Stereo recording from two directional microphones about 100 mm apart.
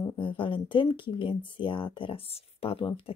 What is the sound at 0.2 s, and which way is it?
Speech, 60° left (ahead or behind).